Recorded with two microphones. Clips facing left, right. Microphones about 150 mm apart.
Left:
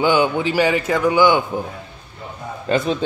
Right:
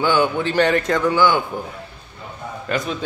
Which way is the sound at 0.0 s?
15° left (ahead or behind).